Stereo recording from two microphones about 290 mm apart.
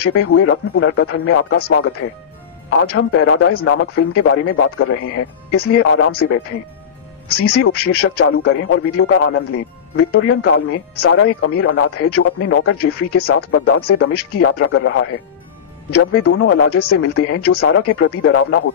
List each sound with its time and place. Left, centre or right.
0.0 s speech: left
2.8 s speech: left
7.5 s speech: left